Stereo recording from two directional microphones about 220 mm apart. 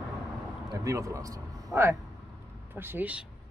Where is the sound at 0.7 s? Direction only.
15° right (ahead or behind).